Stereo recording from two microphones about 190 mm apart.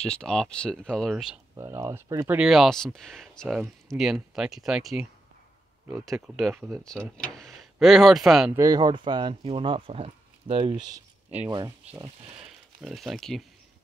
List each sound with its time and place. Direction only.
0.0 s speech: 5° left (ahead or behind)
1.6 s speech: 15° right (ahead or behind)
8.5 s speech: 20° right (ahead or behind)
12.4 s speech: centre (ahead or behind)